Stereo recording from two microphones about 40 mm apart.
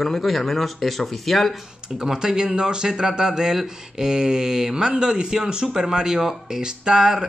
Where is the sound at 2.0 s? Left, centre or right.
Centre.